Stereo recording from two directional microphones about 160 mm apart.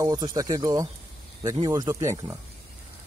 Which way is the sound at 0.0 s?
20° right (ahead or behind).